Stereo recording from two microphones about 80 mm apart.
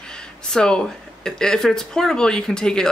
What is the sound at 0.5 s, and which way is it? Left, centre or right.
Speech, centre.